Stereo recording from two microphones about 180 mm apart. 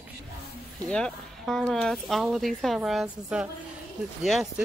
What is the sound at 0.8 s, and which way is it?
Speech, 5° left (ahead or behind).